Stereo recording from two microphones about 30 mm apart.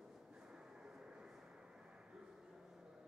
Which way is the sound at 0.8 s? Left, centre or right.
Right.